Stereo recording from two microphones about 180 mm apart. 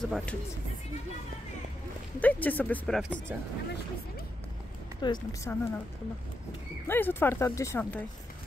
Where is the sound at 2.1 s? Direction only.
10° left (ahead or behind).